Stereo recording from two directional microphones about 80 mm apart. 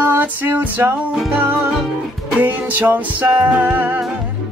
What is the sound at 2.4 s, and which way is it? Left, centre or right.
Music, right.